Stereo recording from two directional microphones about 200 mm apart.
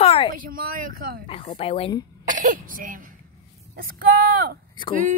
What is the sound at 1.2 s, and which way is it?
Speech, 30° left (ahead or behind).